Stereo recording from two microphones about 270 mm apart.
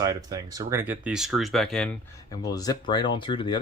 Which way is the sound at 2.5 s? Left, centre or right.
Centre.